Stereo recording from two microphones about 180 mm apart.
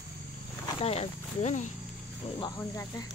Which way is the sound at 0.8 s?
35° left (ahead or behind).